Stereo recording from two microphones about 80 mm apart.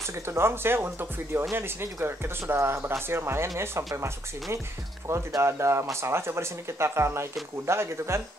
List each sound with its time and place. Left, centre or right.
0.0 s speech: right